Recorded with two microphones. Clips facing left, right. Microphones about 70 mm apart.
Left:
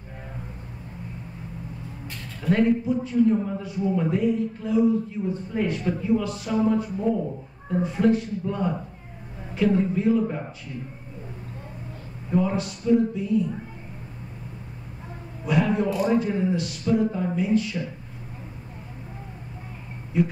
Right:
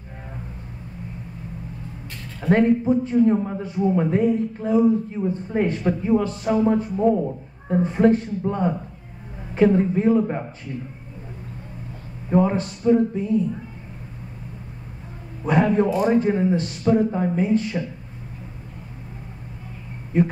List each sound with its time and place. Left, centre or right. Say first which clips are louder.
2.4 s a man's voice: right 3 dB; right
12.3 s a man's voice: right 4 dB; right
15.4 s a man's voice: right 4 dB; right